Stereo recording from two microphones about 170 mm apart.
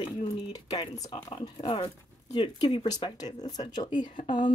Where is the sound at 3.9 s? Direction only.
50° left (ahead or behind).